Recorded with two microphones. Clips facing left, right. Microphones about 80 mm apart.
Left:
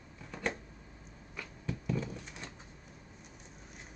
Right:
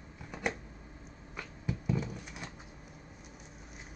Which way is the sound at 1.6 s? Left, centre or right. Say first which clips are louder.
Right 2 dB; centre.